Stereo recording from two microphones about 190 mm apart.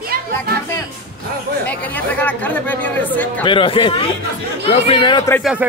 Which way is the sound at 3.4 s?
30° left (ahead or behind).